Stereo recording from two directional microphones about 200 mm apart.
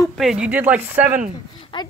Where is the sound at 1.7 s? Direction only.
25° left (ahead or behind).